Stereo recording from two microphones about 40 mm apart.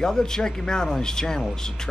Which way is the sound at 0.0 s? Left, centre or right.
Centre.